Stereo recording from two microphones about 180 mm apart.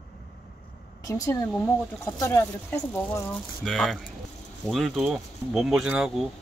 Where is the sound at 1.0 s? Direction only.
20° left (ahead or behind).